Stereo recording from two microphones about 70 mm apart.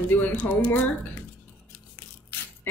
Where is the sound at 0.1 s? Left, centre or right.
Left.